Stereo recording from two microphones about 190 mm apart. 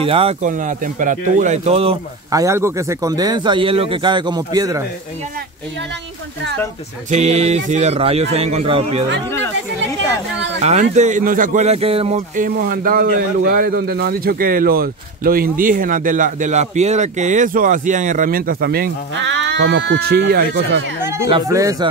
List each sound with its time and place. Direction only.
0.0 s speech: 30° right (ahead or behind)
0.5 s speech: 45° right (ahead or behind)
2.3 s speech: 15° right (ahead or behind)
7.1 s speech: 35° right (ahead or behind)
10.6 s speech: 35° right (ahead or behind)
12.4 s speech: 45° right (ahead or behind)
21.3 s speech: 20° right (ahead or behind)